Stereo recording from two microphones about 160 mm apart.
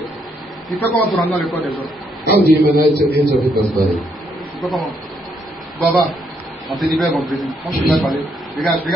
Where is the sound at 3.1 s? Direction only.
75° right (ahead or behind).